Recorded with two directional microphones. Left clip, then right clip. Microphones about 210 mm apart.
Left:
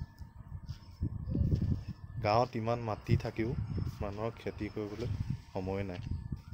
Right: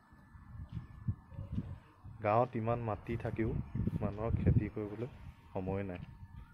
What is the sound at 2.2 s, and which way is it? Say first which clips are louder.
Speech: left 2 dB; 15° left (ahead or behind).